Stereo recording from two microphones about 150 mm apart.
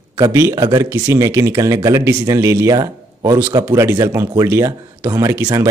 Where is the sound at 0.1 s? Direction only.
15° right (ahead or behind).